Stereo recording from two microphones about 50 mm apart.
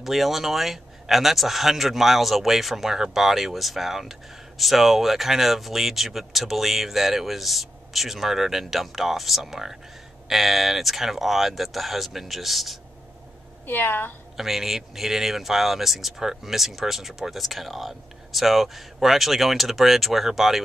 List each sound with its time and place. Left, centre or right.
0.0 s speech: centre
13.7 s a woman's voice: left
14.3 s speech: centre